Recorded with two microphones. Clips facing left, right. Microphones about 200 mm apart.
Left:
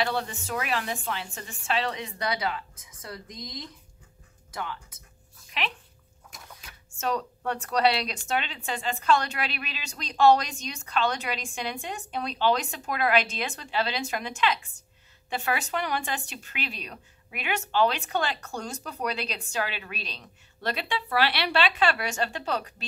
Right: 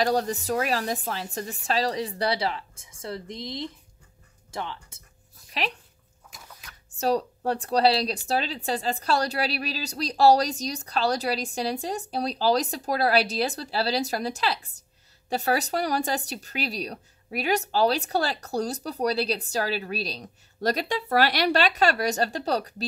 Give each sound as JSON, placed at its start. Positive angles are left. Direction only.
{"t": 0.0, "sound": "a woman's voice", "side_deg": -40}
{"t": 7.0, "sound": "a woman's voice", "side_deg": -35}